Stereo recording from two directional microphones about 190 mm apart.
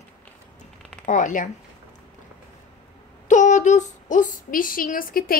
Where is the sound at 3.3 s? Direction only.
40° left (ahead or behind).